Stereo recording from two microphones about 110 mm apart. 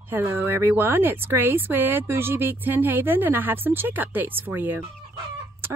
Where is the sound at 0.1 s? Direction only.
20° right (ahead or behind).